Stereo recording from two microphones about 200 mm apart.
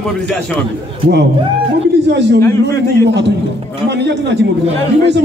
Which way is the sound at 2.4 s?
15° left (ahead or behind).